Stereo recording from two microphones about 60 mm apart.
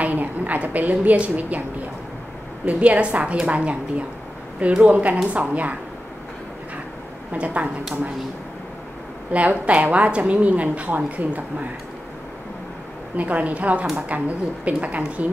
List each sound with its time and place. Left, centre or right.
0.0 s a woman's voice: right
2.6 s a woman's voice: right
7.3 s a woman's voice: right
9.3 s a woman's voice: right
13.1 s a woman's voice: right